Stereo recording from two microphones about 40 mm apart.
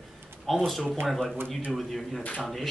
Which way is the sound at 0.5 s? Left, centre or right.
Centre.